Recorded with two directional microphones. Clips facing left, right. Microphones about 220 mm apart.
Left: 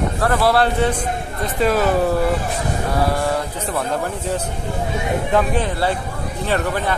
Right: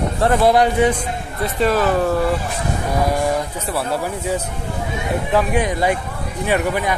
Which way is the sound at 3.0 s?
15° right (ahead or behind).